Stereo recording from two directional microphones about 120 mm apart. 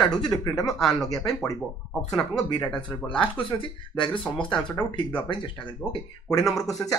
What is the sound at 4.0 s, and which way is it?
Speech, 45° left (ahead or behind).